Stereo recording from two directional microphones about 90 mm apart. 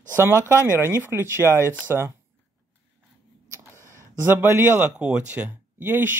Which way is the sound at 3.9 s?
25° right (ahead or behind).